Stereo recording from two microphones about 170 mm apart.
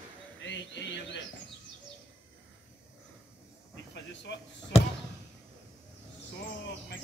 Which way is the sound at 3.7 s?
90° left.